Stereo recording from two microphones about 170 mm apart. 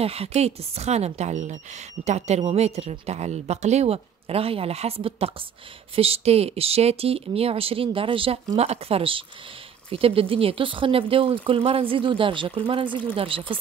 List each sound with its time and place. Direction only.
0.0 s speech: 35° right (ahead or behind)